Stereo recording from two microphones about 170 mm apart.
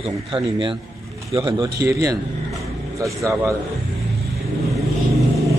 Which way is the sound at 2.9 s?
20° right (ahead or behind).